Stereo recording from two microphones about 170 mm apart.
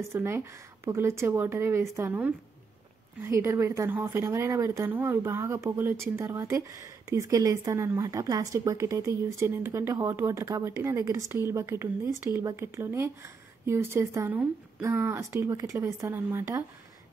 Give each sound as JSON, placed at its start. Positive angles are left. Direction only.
{"t": 0.0, "sound": "a woman's voice", "side_deg": -15}